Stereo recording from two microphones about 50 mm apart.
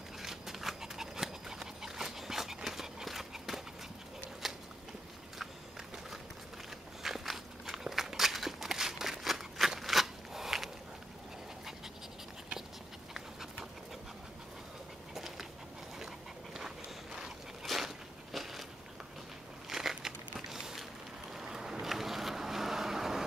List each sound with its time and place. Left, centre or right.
0.2 s dog: centre
4.4 s biting: centre
7.0 s walk: centre
13.1 s dog: centre
15.1 s a sound: centre
16.5 s dog: centre
17.6 s a sound: centre
19.7 s a sound: centre
21.3 s vehicle: centre